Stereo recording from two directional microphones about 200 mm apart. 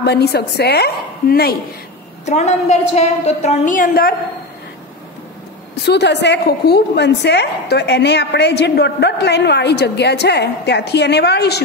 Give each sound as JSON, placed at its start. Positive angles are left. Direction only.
{"t": 0.0, "sound": "a woman's voice", "side_deg": 55}
{"t": 2.2, "sound": "a woman's voice", "side_deg": 35}
{"t": 5.9, "sound": "a woman's voice", "side_deg": 60}